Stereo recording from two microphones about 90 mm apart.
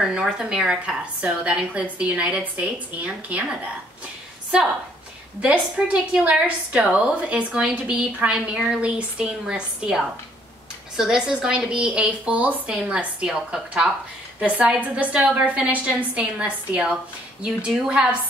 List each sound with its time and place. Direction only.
0.0 s a woman's voice: 5° right (ahead or behind)
5.4 s a woman's voice: 10° right (ahead or behind)